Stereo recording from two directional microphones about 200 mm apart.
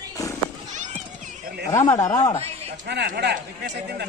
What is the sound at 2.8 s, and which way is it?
Speech, 55° right (ahead or behind).